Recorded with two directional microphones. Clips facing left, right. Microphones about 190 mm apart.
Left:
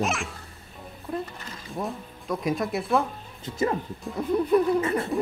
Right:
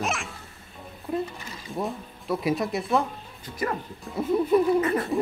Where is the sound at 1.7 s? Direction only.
Centre (ahead or behind).